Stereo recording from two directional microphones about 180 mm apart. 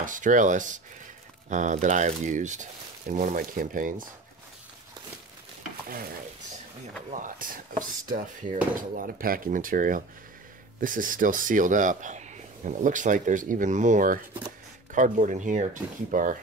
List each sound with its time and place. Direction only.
0.0 s speech: 45° right (ahead or behind)
7.1 s speech: 45° right (ahead or behind)